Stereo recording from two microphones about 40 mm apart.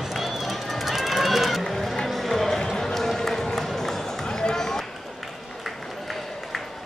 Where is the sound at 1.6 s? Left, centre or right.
Centre.